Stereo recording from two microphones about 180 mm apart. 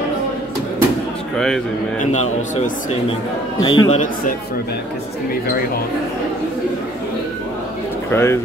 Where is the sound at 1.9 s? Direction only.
40° left (ahead or behind).